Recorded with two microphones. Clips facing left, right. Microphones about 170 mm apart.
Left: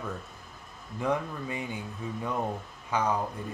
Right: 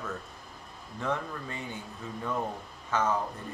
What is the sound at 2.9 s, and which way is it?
Speech, 10° left (ahead or behind).